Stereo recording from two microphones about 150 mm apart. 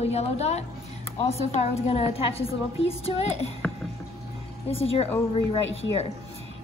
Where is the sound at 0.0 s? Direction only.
45° left (ahead or behind).